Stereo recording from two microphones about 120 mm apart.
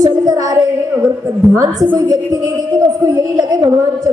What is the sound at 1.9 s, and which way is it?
Music, 30° right (ahead or behind).